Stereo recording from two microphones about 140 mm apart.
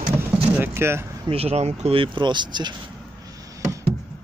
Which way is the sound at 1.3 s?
45° right (ahead or behind).